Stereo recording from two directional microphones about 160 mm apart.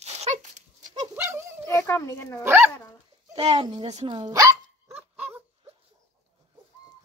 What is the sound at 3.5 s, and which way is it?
Speech, 25° right (ahead or behind).